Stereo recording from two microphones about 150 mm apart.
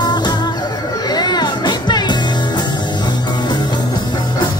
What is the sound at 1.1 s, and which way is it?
Music, 25° left (ahead or behind).